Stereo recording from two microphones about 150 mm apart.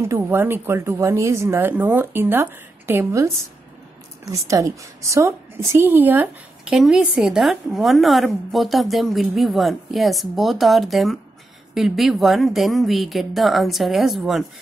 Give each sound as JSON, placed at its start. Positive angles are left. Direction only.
{"t": 0.0, "sound": "a woman's voice", "side_deg": -15}